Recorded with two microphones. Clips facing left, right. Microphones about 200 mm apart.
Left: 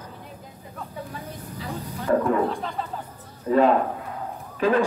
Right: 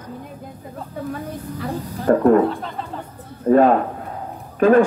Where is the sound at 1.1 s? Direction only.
55° right (ahead or behind).